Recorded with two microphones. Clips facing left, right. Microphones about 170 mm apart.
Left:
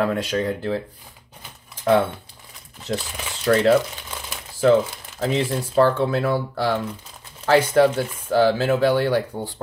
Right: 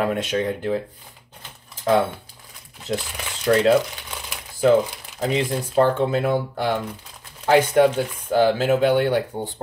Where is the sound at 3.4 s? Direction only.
10° right (ahead or behind).